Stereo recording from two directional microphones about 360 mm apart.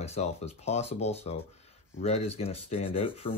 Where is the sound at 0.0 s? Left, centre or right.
Centre.